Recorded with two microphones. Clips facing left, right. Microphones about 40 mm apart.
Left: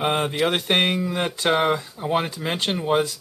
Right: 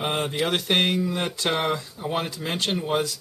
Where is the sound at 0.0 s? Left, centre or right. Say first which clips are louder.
Left 4 dB; centre.